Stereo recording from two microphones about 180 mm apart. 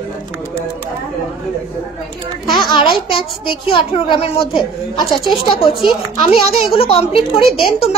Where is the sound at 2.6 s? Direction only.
25° left (ahead or behind).